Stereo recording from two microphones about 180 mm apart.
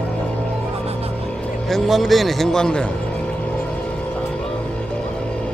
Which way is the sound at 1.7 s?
Centre (ahead or behind).